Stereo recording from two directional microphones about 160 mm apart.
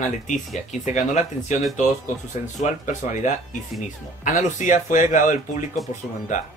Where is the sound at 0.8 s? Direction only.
50° left (ahead or behind).